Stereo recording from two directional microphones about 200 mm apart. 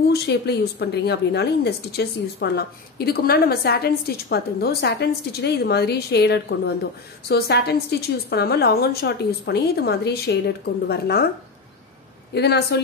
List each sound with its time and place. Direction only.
0.1 s a woman's voice: 55° left (ahead or behind)
12.4 s speech: 55° left (ahead or behind)